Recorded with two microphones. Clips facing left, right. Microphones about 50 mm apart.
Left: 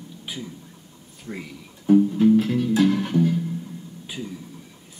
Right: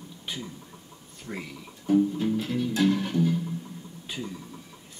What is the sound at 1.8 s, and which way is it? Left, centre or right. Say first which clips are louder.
Music: left 6 dB; centre.